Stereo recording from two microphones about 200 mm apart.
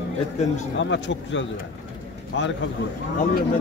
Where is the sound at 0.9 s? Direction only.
65° left (ahead or behind).